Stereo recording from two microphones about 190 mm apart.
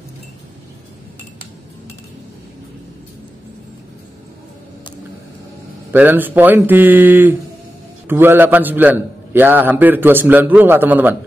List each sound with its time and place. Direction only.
5.9 s a man's voice: 10° right (ahead or behind)